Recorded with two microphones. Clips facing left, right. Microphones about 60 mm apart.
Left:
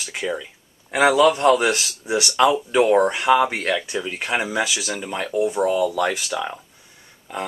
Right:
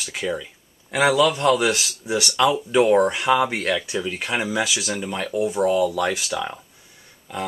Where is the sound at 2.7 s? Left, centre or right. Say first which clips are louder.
Even; centre.